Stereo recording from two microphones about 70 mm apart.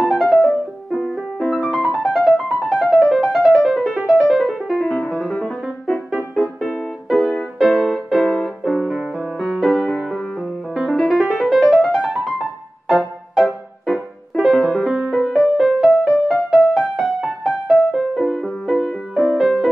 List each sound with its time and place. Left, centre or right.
0.0 s music: centre
10.9 s music: centre
13.4 s music: centre